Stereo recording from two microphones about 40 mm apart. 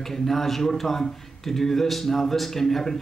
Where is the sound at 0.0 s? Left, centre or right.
Centre.